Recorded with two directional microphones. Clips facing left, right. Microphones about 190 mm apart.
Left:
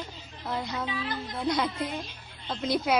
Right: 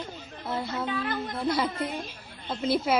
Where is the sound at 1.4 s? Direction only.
5° right (ahead or behind).